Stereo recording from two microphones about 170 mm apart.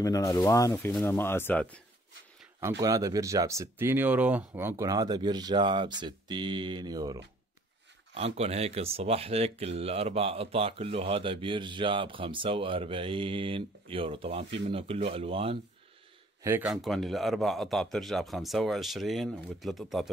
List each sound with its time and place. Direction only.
0.0 s speech: 20° left (ahead or behind)
2.8 s speech: 20° right (ahead or behind)
8.1 s speech: 35° right (ahead or behind)
16.4 s speech: 15° right (ahead or behind)
16.7 s speech: centre (ahead or behind)